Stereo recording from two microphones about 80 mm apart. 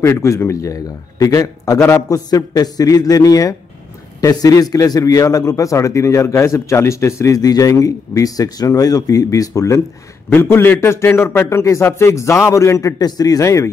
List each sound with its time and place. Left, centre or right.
0.0 s a man's voice: left
10.3 s a man's voice: left
13.0 s a man's voice: left